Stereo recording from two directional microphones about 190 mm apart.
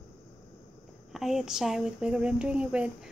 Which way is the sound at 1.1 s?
Centre (ahead or behind).